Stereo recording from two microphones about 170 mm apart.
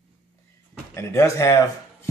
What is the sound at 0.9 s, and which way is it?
Speech, 15° left (ahead or behind).